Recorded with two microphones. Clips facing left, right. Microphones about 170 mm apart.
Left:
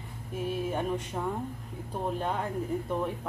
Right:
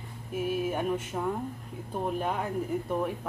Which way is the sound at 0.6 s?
10° right (ahead or behind).